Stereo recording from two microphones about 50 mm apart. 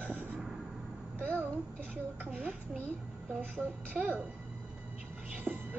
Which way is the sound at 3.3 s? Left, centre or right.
Right.